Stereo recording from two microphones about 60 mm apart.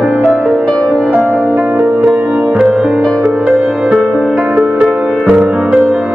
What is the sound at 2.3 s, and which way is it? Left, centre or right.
Music, centre.